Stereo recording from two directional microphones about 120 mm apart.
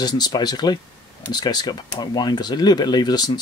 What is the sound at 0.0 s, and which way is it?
Speech, 35° left (ahead or behind).